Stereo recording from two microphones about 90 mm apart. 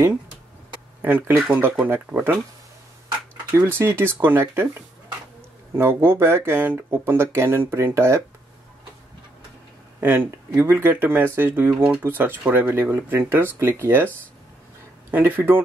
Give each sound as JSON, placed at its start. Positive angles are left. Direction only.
{"t": 1.0, "sound": "speech", "side_deg": -25}
{"t": 3.5, "sound": "speech", "side_deg": -25}
{"t": 5.8, "sound": "speech", "side_deg": -25}
{"t": 9.9, "sound": "speech", "side_deg": -25}
{"t": 15.0, "sound": "speech", "side_deg": -20}